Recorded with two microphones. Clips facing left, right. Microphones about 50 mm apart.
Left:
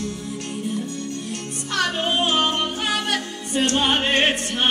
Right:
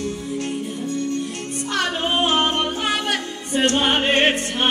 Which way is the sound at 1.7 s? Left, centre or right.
Right.